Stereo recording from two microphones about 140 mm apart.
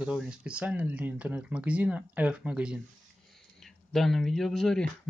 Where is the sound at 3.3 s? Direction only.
Centre (ahead or behind).